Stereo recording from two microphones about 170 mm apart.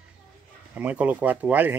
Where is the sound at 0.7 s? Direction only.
10° right (ahead or behind).